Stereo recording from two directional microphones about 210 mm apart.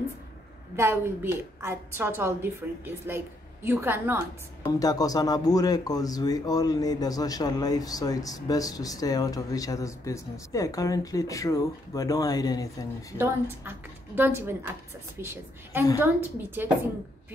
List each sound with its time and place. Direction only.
0.7 s a woman's voice: 10° right (ahead or behind)
4.6 s speech: 15° left (ahead or behind)
13.2 s a woman's voice: 10° right (ahead or behind)